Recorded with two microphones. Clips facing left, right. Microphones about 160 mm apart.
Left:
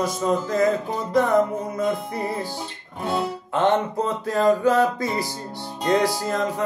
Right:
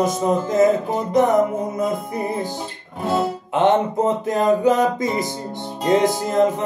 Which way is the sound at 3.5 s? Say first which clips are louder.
Right 4 dB; 20° right (ahead or behind).